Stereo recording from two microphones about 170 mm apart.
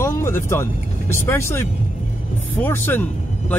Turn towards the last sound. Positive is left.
turn(degrees=15)  # may be behind; listen again after turning